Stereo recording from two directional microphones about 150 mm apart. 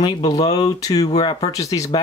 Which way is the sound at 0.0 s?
25° left (ahead or behind).